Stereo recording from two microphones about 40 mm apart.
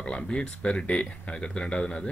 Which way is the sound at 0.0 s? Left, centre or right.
Left.